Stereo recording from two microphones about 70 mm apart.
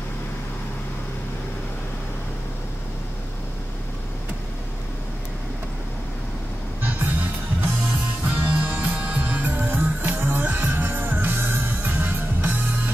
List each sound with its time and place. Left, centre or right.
6.8 s music: right